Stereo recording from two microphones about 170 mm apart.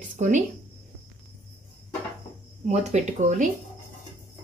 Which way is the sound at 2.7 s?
40° right (ahead or behind).